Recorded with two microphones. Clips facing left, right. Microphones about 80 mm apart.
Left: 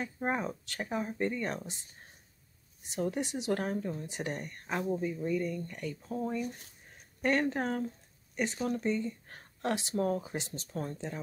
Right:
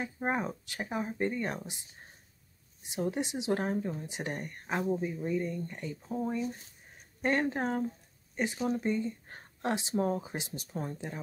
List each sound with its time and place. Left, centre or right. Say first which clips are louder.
0.0 s speech: right 1 dB; centre
3.0 s speech: right 1 dB; centre
4.8 s speech: right 1 dB; centre
5.1 s speech: even; right